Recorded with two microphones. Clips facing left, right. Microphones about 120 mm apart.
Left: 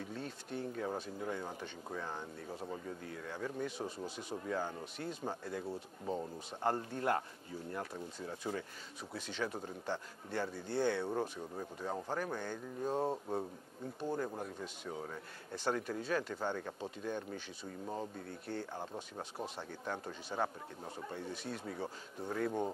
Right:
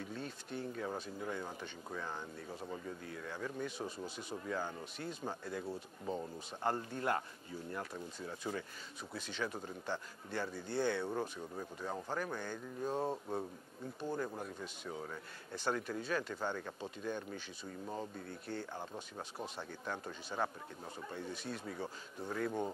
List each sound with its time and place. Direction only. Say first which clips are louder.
0.7 s speech: left 2 dB; 30° left (ahead or behind)
3.8 s speech: left 1 dB; 25° left (ahead or behind)
5.7 s speech: left 1 dB; 15° left (ahead or behind)
6.6 s speech: left 2 dB; 35° left (ahead or behind)
18.8 s speech: left 2 dB; 25° left (ahead or behind)